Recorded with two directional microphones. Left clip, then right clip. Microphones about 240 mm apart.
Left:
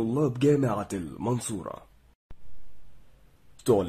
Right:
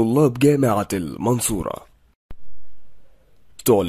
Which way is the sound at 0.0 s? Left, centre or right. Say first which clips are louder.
Right 9 dB; right.